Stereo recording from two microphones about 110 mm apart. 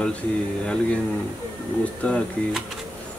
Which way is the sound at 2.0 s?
10° left (ahead or behind).